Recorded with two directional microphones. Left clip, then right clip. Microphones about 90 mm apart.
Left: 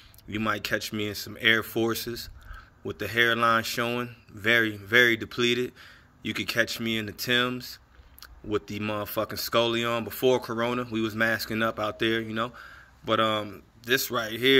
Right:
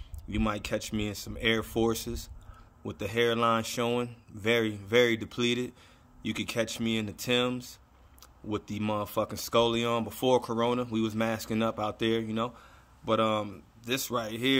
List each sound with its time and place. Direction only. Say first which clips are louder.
0.3 s speech: left 4 dB; 20° right (ahead or behind)